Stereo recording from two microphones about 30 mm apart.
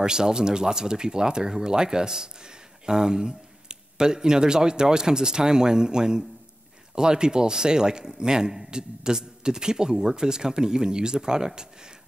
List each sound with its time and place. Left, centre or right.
0.0 s a man's voice: right